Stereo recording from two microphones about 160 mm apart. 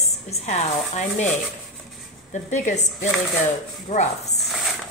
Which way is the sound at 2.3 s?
50° left (ahead or behind).